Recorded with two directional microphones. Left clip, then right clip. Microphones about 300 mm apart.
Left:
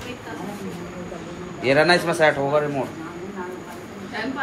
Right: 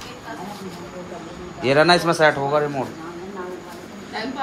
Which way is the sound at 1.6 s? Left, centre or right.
Right.